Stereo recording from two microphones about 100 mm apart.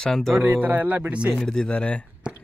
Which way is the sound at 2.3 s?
10° right (ahead or behind).